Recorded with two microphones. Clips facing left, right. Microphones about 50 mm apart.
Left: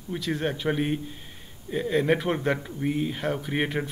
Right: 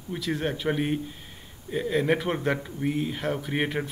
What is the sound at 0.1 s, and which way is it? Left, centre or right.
Speech, centre.